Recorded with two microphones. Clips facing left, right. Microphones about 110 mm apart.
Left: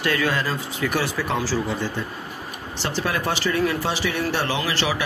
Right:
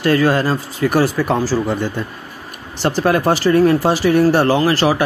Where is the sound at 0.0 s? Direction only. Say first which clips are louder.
Right 8 dB; 40° right (ahead or behind).